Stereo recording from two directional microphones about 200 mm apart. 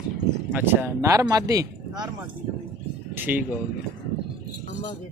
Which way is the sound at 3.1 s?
10° right (ahead or behind).